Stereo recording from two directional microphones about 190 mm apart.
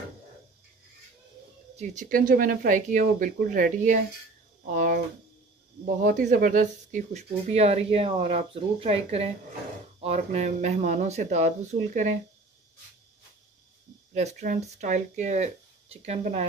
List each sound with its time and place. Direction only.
1.8 s speech: 45° right (ahead or behind)
14.1 s speech: 40° right (ahead or behind)